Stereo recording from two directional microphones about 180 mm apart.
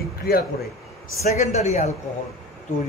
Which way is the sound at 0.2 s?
60° left (ahead or behind).